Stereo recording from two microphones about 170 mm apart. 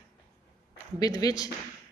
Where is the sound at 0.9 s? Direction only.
20° left (ahead or behind).